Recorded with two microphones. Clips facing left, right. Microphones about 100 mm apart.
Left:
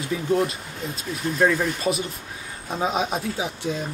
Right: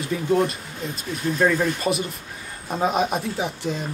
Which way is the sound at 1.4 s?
Centre (ahead or behind).